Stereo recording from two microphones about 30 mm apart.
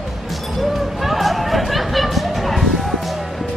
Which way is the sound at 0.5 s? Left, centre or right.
Centre.